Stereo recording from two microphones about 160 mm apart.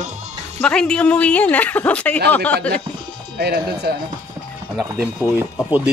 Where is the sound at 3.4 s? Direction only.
80° right.